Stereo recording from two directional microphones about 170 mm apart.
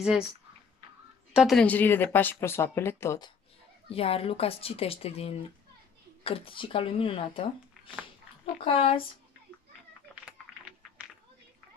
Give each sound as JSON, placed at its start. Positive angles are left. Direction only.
{"t": 1.3, "sound": "speech", "side_deg": 0}
{"t": 3.9, "sound": "speech", "side_deg": 35}
{"t": 10.3, "sound": "a sound", "side_deg": -10}